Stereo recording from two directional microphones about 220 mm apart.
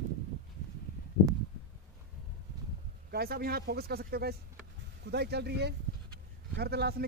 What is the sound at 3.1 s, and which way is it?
Speech, 45° right (ahead or behind).